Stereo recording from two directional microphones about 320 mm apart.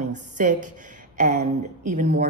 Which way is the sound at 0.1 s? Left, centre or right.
Right.